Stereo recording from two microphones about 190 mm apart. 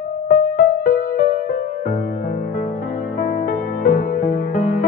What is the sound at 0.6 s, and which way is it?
Music, 50° left (ahead or behind).